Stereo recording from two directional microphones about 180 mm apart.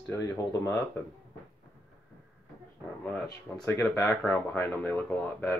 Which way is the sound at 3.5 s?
5° left (ahead or behind).